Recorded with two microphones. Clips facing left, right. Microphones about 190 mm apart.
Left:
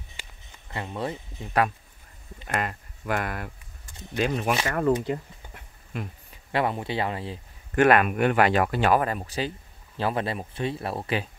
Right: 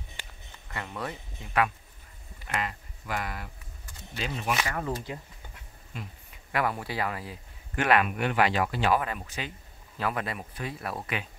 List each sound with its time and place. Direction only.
0.7 s speech: 25° left (ahead or behind)
2.4 s speech: 50° left (ahead or behind)
5.0 s a sound: 55° left (ahead or behind)
6.5 s speech: 25° left (ahead or behind)
7.7 s speech: 50° left (ahead or behind); by 11.2 s 30° left (ahead or behind)